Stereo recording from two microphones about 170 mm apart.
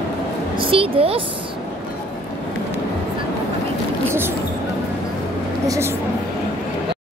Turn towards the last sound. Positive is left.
turn(degrees=-15)  # may be behind; listen again after turning